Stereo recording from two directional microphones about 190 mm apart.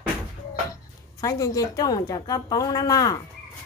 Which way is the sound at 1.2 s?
20° left (ahead or behind).